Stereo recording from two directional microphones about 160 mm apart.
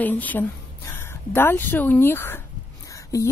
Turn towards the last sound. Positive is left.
turn(degrees=20)  # may be behind; listen again after turning